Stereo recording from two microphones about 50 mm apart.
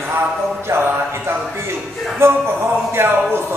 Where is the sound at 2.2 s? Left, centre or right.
Right.